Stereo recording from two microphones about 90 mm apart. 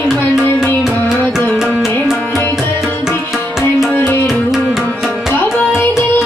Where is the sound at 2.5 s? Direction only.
5° right (ahead or behind).